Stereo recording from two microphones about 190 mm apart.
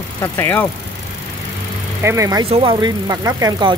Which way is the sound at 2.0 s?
15° right (ahead or behind).